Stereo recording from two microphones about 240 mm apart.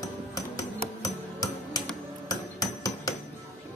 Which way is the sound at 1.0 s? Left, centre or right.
Centre.